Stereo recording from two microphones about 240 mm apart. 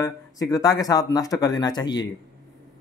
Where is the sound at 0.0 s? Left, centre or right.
Centre.